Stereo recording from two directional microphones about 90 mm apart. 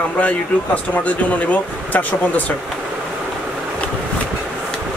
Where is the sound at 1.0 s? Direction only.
15° left (ahead or behind).